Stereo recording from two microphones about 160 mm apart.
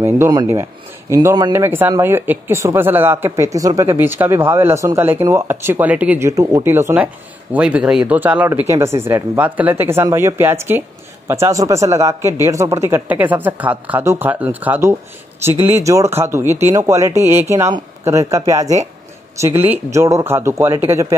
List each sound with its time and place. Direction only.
0.0 s speech: 15° right (ahead or behind)